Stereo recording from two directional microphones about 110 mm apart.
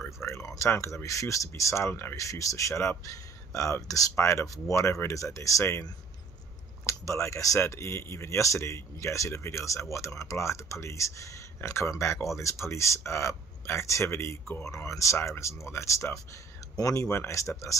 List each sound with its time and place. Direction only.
0.2 s speech: 25° left (ahead or behind)
6.9 s speech: 25° left (ahead or behind)